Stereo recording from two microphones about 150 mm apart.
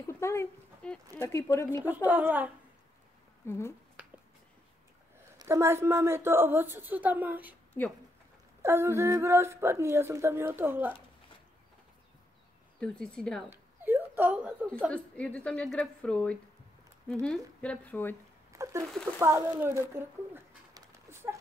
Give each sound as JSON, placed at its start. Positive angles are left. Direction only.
{"t": 0.0, "sound": "a sound", "side_deg": 20}
{"t": 1.1, "sound": "speech", "side_deg": 20}
{"t": 1.9, "sound": "a woman's voice", "side_deg": -10}
{"t": 3.4, "sound": "a woman's voice", "side_deg": 15}
{"t": 5.4, "sound": "a woman's voice", "side_deg": -20}
{"t": 8.6, "sound": "a woman's voice", "side_deg": -15}
{"t": 12.8, "sound": "a woman's voice", "side_deg": 5}
{"t": 13.5, "sound": "a sound", "side_deg": -15}
{"t": 14.9, "sound": "a woman's voice", "side_deg": 10}
{"t": 18.5, "sound": "a sound", "side_deg": -20}
{"t": 19.1, "sound": "a woman's voice", "side_deg": -20}
{"t": 20.7, "sound": "dog", "side_deg": -20}